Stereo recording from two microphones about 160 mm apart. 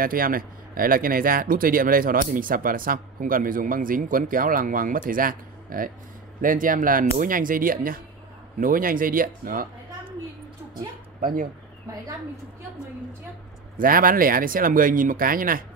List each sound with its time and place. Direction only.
0.0 s speech: 65° right (ahead or behind)
11.1 s speech: 55° right (ahead or behind)
13.7 s speech: 65° right (ahead or behind)